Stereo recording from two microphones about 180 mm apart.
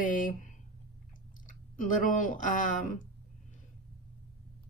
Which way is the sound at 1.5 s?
45° left (ahead or behind).